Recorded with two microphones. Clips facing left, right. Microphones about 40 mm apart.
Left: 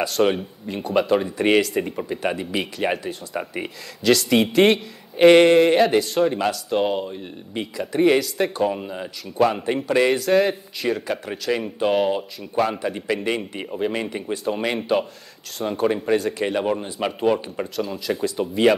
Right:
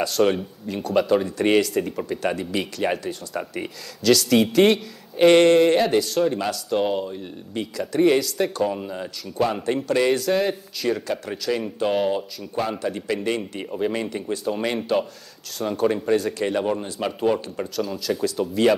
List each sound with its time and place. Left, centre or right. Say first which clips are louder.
0.0 s speech: even; centre
10.2 s speech: left 3 dB; centre